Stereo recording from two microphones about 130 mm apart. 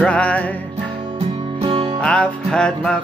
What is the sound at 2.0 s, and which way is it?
Music, 10° left (ahead or behind).